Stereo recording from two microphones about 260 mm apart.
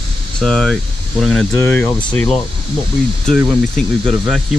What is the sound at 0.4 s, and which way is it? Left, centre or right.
Speech, centre.